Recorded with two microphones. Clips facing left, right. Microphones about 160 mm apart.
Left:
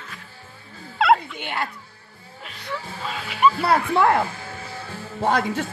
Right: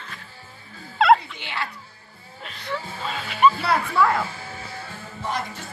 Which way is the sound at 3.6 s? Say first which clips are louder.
Left 2 dB; 55° left (ahead or behind).